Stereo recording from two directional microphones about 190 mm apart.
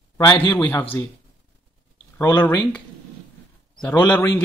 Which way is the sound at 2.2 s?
10° left (ahead or behind).